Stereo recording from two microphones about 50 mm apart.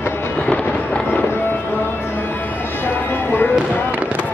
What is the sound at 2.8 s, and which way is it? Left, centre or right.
Music, left.